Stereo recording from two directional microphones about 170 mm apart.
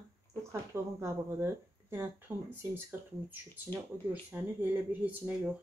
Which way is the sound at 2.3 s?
15° right (ahead or behind).